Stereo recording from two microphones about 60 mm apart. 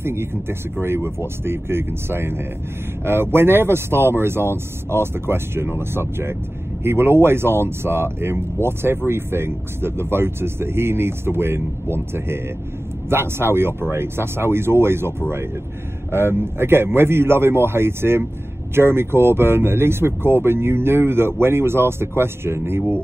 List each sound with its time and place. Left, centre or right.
0.0 s speech: right